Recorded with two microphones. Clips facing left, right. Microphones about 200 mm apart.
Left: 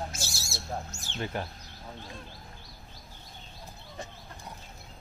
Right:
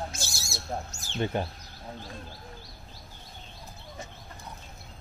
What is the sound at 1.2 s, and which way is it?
Speech, 25° right (ahead or behind).